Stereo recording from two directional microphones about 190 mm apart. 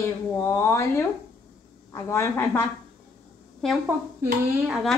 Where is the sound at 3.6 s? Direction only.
Centre (ahead or behind).